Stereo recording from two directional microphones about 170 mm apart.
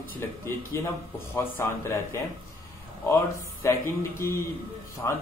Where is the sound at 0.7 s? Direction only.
15° left (ahead or behind).